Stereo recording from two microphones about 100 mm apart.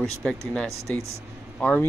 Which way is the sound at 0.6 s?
30° right (ahead or behind).